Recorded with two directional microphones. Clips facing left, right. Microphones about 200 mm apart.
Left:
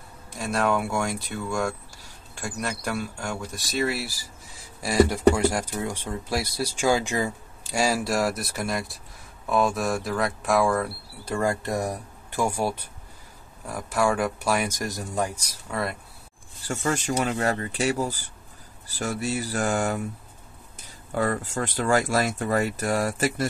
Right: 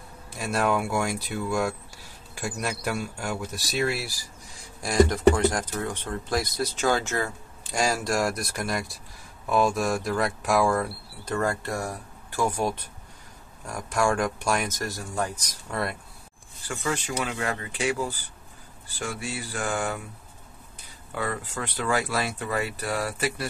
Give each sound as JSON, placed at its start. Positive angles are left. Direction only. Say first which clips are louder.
{"t": 0.4, "sound": "speech", "louder": "left 1 dB", "side_deg": 0}
{"t": 15.7, "sound": "speech", "louder": "left 1 dB", "side_deg": 0}
{"t": 16.6, "sound": "speech", "louder": "left 3 dB", "side_deg": 40}